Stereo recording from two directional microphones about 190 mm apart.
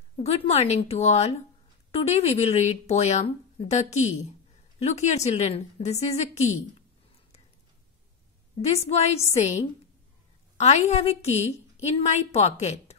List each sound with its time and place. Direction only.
0.3 s speech: 35° left (ahead or behind)
8.5 s speech: 35° left (ahead or behind)
10.6 s speech: 35° left (ahead or behind)